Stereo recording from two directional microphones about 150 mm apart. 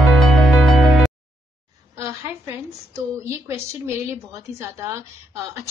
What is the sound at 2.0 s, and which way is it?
A woman's voice, 20° right (ahead or behind).